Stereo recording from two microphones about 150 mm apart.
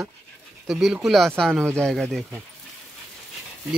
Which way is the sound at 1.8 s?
5° left (ahead or behind).